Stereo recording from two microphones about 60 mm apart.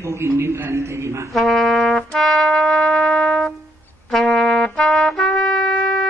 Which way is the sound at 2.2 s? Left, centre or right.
Centre.